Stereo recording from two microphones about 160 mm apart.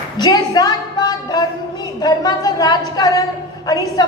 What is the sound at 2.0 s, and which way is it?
A woman's voice, 25° left (ahead or behind).